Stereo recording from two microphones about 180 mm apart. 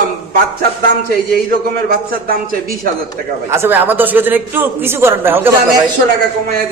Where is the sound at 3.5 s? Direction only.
10° right (ahead or behind).